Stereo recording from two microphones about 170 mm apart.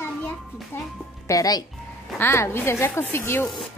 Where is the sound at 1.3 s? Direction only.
20° left (ahead or behind).